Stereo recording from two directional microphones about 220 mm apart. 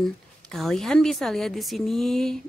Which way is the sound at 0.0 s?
Centre (ahead or behind).